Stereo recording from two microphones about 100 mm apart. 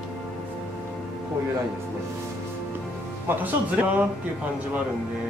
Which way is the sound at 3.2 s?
20° right (ahead or behind).